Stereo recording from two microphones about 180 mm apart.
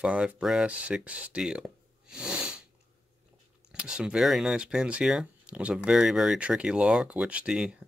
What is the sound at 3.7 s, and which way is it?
Speech, 5° right (ahead or behind).